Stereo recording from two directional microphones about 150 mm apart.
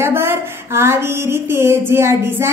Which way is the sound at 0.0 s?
15° right (ahead or behind).